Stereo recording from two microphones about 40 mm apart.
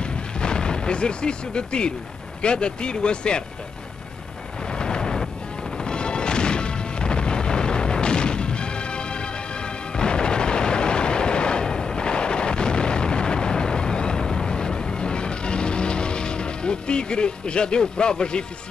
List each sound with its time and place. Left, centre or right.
0.0 s artillery fire: left
2.4 s speech: left
4.7 s a sound: centre
5.9 s music: left
9.9 s artillery fire: left